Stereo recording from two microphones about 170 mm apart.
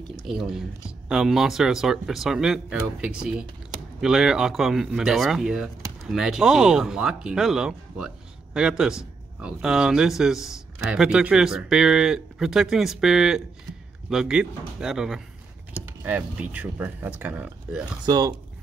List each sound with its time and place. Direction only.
0.3 s a man's voice: centre (ahead or behind)
18.0 s speech: 20° right (ahead or behind)